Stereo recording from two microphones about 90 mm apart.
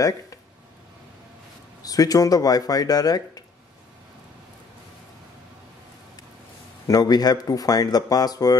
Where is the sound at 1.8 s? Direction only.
45° left (ahead or behind).